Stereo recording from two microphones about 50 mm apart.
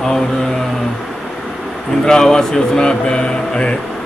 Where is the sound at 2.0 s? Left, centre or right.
Centre.